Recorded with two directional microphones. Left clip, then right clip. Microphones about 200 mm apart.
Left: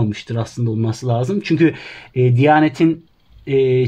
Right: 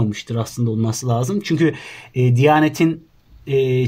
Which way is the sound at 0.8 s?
25° left (ahead or behind).